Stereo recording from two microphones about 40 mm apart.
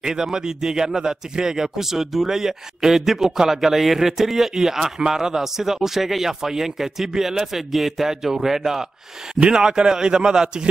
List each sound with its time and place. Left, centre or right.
0.0 s a man's voice: centre
9.4 s speech: centre